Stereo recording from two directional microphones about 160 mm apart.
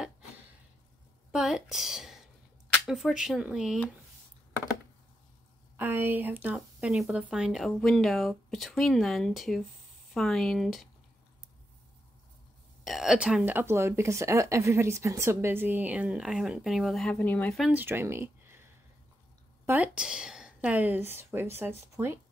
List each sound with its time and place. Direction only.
1.3 s speech: 5° right (ahead or behind)
5.8 s speech: 10° right (ahead or behind)
12.8 s speech: centre (ahead or behind)
17.6 s speech: 10° right (ahead or behind)
19.6 s a woman's voice: 10° right (ahead or behind)